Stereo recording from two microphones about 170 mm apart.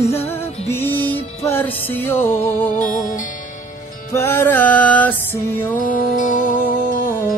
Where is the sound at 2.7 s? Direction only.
55° left (ahead or behind).